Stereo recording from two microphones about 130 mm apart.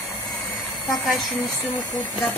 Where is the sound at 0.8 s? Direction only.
Centre (ahead or behind).